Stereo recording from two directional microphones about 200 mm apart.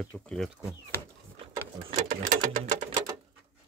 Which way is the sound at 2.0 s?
40° right (ahead or behind).